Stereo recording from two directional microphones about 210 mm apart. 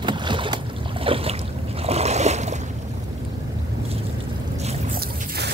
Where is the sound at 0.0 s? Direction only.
20° right (ahead or behind).